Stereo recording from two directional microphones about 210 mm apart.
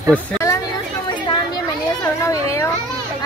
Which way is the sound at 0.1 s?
15° left (ahead or behind).